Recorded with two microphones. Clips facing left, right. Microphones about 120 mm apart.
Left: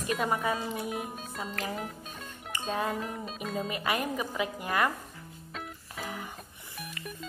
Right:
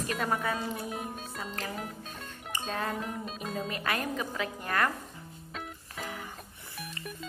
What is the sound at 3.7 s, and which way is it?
Speech, 10° left (ahead or behind).